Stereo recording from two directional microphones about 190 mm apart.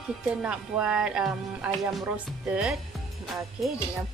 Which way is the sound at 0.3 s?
5° right (ahead or behind).